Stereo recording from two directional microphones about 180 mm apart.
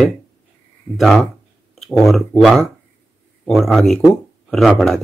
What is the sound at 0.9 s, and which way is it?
Speech, centre (ahead or behind).